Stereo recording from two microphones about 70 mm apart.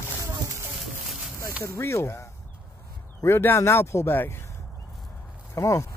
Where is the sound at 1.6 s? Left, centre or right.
Left.